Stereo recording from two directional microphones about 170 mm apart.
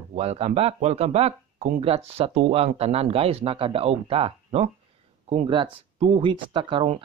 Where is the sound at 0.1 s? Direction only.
40° right (ahead or behind).